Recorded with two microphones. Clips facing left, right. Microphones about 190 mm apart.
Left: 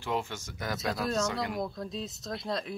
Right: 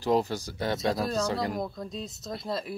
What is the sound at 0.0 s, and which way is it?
Speech, 35° right (ahead or behind).